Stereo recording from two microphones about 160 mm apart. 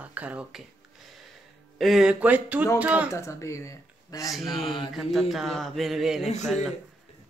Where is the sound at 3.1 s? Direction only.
20° left (ahead or behind).